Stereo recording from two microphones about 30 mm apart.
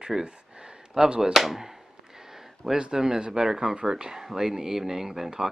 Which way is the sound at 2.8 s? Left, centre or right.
Right.